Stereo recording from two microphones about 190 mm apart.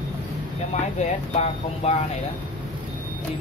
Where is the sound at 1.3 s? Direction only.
35° left (ahead or behind).